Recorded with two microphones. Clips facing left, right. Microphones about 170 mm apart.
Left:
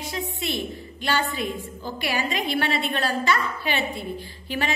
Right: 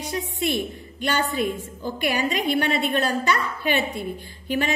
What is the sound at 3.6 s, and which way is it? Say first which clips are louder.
A woman's voice: right 3 dB; 50° right (ahead or behind).